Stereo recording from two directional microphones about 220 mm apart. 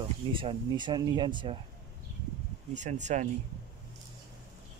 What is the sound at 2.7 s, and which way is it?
Speech, 35° right (ahead or behind).